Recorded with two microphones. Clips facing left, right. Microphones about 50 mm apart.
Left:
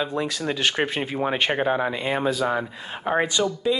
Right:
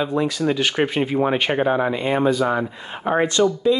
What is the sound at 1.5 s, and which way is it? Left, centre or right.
Speech, right.